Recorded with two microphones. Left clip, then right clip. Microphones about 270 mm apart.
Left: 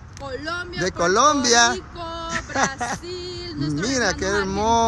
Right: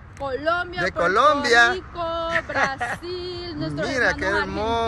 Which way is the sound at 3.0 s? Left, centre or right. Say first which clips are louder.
Right 1 dB; centre.